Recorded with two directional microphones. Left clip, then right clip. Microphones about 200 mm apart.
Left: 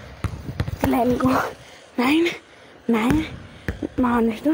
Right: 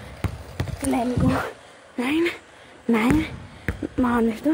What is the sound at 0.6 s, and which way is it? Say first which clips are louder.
Clip-clop: even; 25° right (ahead or behind).